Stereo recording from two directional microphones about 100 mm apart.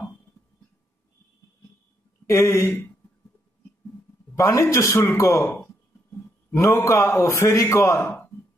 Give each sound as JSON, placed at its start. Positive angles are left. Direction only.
{"t": 2.2, "sound": "speech", "side_deg": 30}
{"t": 4.4, "sound": "a man's voice", "side_deg": 30}